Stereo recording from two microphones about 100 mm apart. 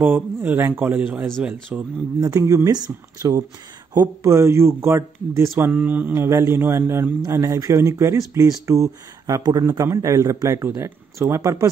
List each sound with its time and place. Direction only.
0.0 s speech: 20° right (ahead or behind)
1.7 s mantra: 10° right (ahead or behind)
2.1 s speech: 35° right (ahead or behind)
5.6 s mantra: 15° right (ahead or behind)
6.2 s speech: 30° right (ahead or behind)